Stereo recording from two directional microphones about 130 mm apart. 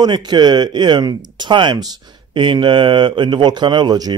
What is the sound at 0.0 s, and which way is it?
Speech, 35° right (ahead or behind).